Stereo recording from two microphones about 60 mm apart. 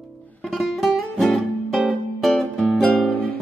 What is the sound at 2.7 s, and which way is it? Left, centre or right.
Music, centre.